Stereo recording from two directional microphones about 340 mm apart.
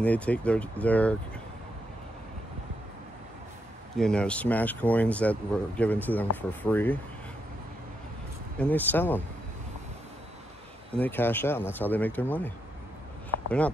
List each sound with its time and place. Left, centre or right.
0.0 s speech: centre
3.9 s speech: centre
8.5 s speech: centre
11.0 s speech: centre
13.3 s a sound: left